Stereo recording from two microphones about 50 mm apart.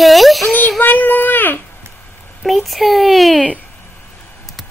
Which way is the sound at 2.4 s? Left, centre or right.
Centre.